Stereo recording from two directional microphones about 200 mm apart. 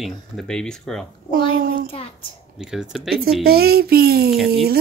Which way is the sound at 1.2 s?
45° right (ahead or behind).